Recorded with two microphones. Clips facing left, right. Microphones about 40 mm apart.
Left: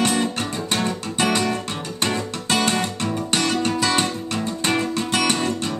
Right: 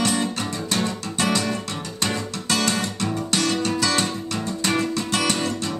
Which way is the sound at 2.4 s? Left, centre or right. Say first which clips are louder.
Left 2 dB; left.